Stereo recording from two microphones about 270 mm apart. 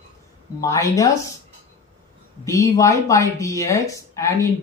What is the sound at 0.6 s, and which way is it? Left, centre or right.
Speech, centre.